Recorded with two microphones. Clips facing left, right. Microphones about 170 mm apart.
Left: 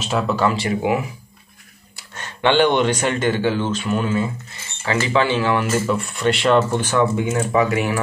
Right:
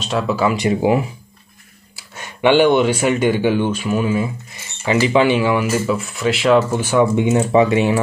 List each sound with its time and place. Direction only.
0.0 s speech: centre (ahead or behind)
2.0 s speech: 10° right (ahead or behind)
5.7 s speech: centre (ahead or behind)
7.2 s speech: 20° right (ahead or behind)